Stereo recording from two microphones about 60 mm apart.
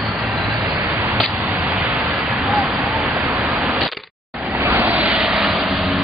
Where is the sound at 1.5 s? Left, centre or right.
Right.